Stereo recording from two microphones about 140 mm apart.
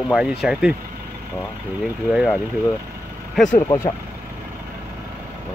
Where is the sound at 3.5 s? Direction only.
25° left (ahead or behind).